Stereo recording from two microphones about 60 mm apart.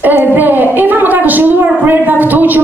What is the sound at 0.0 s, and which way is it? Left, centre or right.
A woman's voice, right.